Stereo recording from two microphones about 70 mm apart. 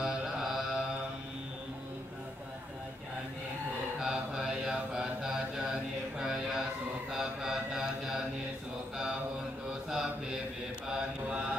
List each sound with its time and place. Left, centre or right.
0.0 s mantra: centre
4.0 s mantra: centre
7.1 s a sound: centre
9.7 s mantra: centre